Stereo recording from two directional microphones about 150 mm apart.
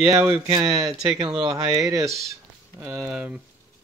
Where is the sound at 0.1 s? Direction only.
20° right (ahead or behind).